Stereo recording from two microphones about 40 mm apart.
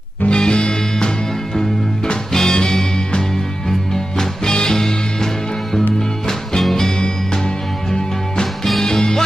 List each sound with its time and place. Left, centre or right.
0.3 s music: left
6.6 s music: centre
8.8 s music: centre